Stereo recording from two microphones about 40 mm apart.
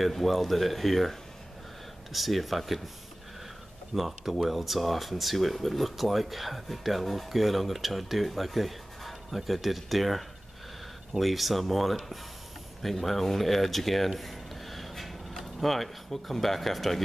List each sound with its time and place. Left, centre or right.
0.0 s speech: centre
2.1 s speech: centre
3.9 s speech: centre